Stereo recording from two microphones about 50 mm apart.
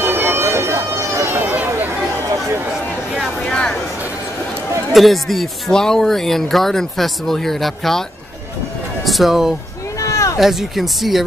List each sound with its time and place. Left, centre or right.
0.0 s a sound: right
4.9 s a woman's voice: centre
5.7 s speech: centre
9.0 s a woman's voice: centre
9.9 s a sound: left
10.4 s a woman's voice: centre